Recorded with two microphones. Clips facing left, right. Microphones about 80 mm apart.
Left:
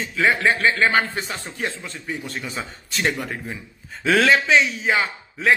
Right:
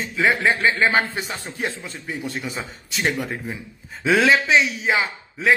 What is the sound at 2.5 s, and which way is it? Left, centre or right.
A man's voice, centre.